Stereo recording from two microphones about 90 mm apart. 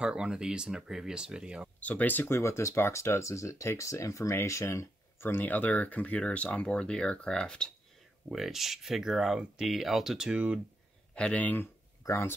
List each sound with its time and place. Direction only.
0.0 s speech: 10° right (ahead or behind)
1.8 s speech: 15° left (ahead or behind)
8.3 s speech: 5° right (ahead or behind)
10.3 s speech: 15° right (ahead or behind)
11.1 s speech: 15° left (ahead or behind); by 12.4 s 30° left (ahead or behind)